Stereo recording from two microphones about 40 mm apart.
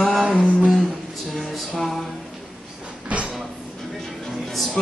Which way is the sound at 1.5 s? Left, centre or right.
Centre.